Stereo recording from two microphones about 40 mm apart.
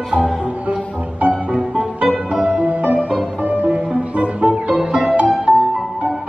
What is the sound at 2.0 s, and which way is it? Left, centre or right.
Music, centre.